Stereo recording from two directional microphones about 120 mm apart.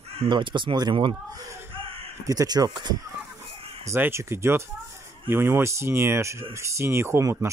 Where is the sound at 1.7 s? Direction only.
50° right (ahead or behind).